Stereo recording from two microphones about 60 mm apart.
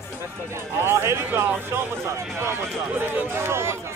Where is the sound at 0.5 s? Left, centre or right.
Right.